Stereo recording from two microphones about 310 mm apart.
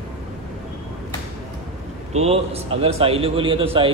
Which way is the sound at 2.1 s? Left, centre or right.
Centre.